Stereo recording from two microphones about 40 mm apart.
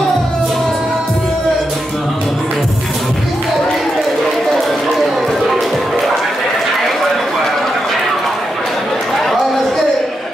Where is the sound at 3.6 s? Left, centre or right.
Centre.